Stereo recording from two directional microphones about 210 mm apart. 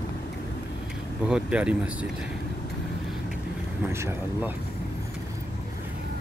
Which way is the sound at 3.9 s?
10° right (ahead or behind).